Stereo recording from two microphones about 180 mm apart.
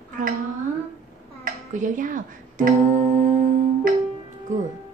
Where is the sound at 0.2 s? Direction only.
45° right (ahead or behind).